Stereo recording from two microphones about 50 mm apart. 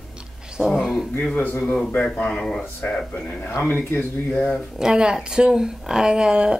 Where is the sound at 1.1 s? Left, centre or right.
Left.